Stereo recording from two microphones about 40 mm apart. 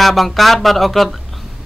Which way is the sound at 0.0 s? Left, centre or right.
Centre.